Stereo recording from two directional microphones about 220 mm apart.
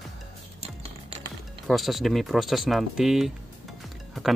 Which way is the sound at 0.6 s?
25° right (ahead or behind).